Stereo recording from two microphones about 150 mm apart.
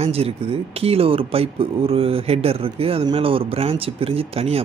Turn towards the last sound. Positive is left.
turn(degrees=-40)  # may be behind; listen again after turning